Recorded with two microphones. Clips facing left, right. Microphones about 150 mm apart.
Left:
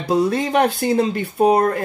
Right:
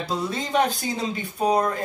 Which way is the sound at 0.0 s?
60° left (ahead or behind).